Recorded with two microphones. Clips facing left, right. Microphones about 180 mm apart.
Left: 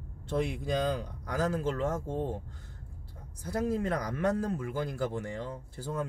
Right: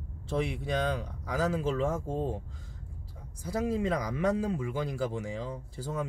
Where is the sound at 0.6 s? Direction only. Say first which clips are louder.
Left 1 dB; 65° right (ahead or behind).